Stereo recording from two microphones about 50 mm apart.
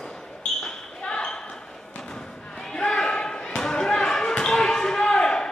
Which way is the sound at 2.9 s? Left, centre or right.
Centre.